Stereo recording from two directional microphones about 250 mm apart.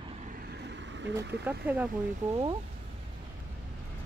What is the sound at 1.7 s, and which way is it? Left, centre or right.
Speech, centre.